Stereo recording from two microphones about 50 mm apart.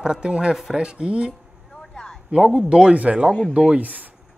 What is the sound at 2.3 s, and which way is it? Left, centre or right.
Speech, centre.